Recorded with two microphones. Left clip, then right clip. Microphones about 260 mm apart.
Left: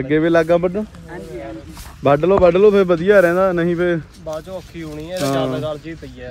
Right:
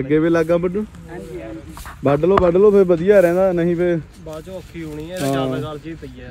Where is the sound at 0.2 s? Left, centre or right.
Left.